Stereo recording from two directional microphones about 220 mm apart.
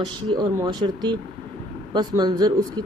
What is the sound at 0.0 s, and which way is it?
Speech, 20° right (ahead or behind).